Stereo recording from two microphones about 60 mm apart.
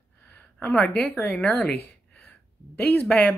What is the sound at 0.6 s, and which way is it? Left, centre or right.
Speech, left.